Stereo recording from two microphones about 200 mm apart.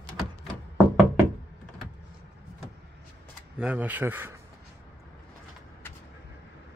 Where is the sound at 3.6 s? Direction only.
5° right (ahead or behind).